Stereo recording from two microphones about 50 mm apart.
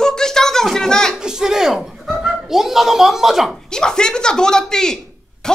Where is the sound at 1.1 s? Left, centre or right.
Centre.